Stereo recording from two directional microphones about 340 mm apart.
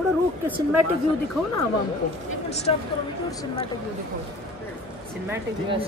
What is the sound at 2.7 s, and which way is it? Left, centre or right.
Speech, centre.